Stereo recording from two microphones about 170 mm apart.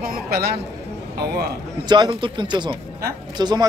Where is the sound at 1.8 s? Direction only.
25° right (ahead or behind).